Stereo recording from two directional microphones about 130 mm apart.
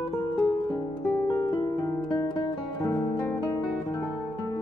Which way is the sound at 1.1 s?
25° left (ahead or behind).